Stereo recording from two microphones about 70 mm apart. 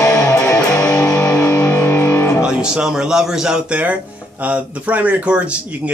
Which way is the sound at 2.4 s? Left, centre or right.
Centre.